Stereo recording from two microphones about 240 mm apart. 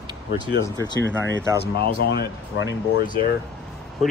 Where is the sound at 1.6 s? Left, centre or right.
Left.